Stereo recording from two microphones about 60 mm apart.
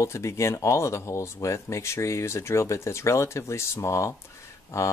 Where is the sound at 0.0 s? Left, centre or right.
Left.